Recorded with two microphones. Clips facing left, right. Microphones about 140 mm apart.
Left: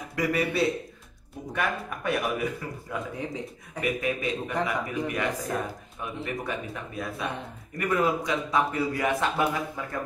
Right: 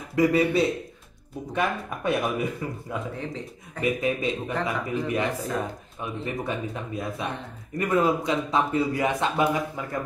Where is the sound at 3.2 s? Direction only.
15° left (ahead or behind).